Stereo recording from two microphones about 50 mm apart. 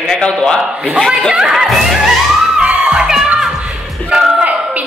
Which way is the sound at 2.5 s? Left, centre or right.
Centre.